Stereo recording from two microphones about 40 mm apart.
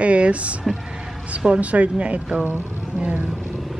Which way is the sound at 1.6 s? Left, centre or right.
Right.